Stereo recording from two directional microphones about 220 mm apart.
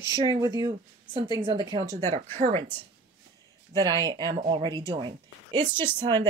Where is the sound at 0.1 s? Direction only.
15° right (ahead or behind).